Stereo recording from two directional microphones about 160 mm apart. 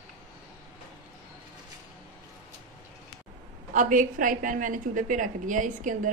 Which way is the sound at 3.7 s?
55° right (ahead or behind).